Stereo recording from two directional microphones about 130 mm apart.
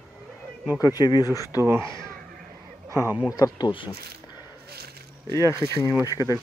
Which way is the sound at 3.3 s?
30° left (ahead or behind).